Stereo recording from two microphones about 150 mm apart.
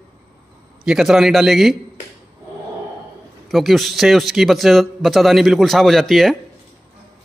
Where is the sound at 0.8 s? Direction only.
5° right (ahead or behind).